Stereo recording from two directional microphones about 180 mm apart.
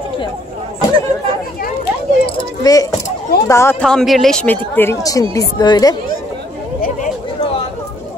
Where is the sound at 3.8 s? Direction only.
Centre (ahead or behind); by 5.9 s 20° left (ahead or behind).